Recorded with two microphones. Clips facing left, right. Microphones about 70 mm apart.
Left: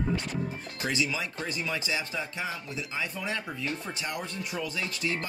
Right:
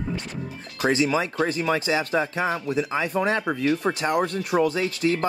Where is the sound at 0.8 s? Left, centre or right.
Right.